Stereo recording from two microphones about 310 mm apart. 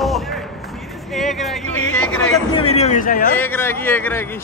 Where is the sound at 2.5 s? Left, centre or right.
Centre.